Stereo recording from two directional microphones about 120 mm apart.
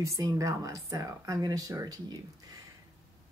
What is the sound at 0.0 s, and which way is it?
Speech, 30° right (ahead or behind).